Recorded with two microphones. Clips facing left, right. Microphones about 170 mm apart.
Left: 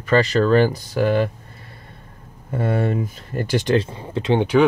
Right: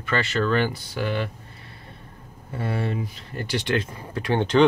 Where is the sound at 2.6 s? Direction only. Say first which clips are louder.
Left 6 dB; 50° left (ahead or behind); by 4.4 s 25° left (ahead or behind).